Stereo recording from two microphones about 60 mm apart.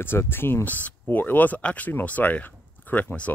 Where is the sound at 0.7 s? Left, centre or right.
Left.